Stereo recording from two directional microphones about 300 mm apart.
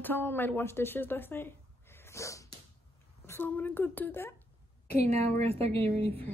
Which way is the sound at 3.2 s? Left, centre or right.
Centre.